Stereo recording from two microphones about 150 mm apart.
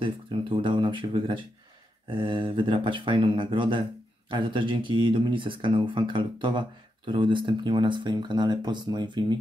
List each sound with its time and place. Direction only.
0.0 s speech: 35° right (ahead or behind)